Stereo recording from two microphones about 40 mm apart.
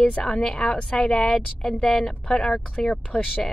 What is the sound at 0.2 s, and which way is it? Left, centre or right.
Speech, centre.